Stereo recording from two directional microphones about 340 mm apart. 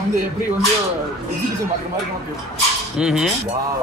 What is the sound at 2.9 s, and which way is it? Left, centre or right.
Speech, centre.